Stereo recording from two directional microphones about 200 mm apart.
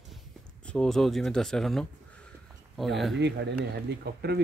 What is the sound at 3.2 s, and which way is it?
Speech, 60° right (ahead or behind).